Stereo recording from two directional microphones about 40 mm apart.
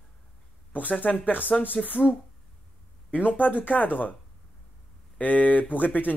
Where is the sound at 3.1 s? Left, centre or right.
Left.